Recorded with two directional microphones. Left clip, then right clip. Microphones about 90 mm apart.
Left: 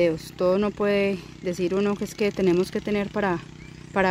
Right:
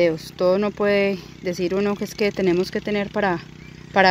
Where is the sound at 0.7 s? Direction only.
Centre (ahead or behind).